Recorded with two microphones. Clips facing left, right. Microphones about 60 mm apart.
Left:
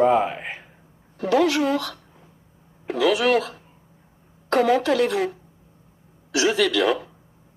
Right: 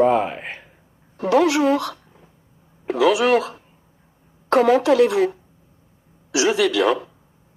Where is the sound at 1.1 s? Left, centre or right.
Centre.